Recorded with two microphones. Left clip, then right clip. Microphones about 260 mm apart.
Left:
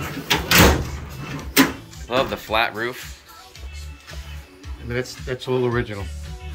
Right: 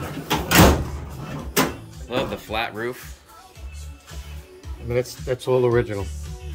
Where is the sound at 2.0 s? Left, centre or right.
Centre.